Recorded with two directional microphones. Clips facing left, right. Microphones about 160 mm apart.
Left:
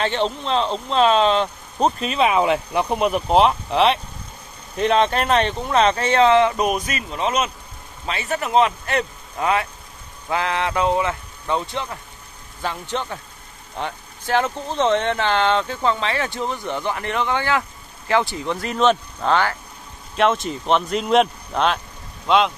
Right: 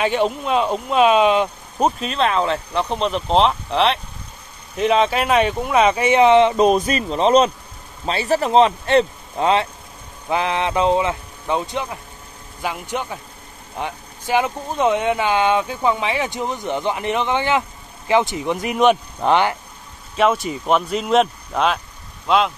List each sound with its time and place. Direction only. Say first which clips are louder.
0.0 s speech: right 3 dB; 10° right (ahead or behind)
20.2 s speech: right 1 dB; 5° right (ahead or behind)